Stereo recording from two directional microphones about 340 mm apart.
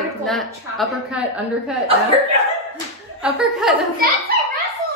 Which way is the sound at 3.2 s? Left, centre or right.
Centre.